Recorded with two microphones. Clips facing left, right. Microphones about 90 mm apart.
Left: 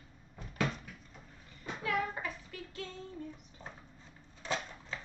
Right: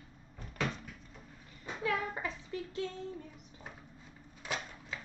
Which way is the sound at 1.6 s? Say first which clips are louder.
Even; 20° right (ahead or behind).